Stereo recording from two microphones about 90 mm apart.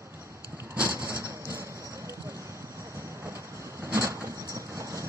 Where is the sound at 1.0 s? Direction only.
30° right (ahead or behind).